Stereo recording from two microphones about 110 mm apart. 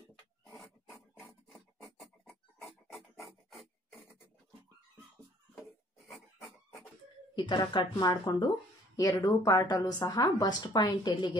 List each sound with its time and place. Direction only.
1.5 s filing: centre (ahead or behind)
7.3 s a woman's voice: 45° left (ahead or behind)